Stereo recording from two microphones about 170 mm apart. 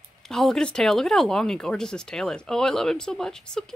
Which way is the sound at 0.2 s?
Centre (ahead or behind).